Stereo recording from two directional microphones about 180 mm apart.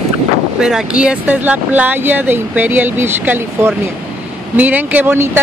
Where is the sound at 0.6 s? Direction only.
5° right (ahead or behind).